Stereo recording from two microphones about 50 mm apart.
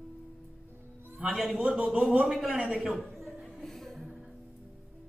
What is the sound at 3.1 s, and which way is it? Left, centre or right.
Music, centre.